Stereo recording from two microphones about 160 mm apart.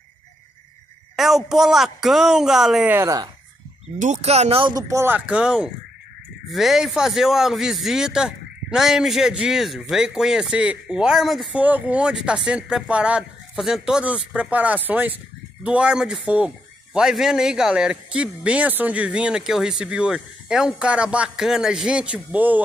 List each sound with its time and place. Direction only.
1.1 s speech: centre (ahead or behind); by 3.3 s 20° right (ahead or behind)
4.0 s speech: 45° right (ahead or behind); by 22.6 s 10° right (ahead or behind)